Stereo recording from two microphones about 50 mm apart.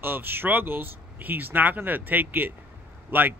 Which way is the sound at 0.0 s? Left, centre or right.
Right.